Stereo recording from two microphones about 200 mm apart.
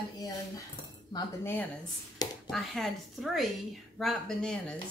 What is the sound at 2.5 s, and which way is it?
A woman's voice, centre (ahead or behind).